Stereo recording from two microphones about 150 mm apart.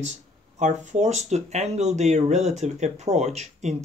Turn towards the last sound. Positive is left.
turn(degrees=-50)  # may be behind; listen again after turning